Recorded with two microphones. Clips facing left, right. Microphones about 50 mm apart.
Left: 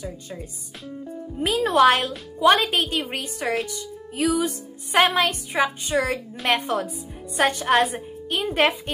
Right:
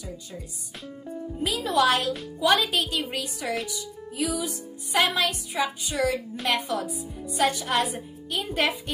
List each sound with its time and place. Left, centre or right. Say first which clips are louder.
1.4 s a woman's voice: left 6 dB; left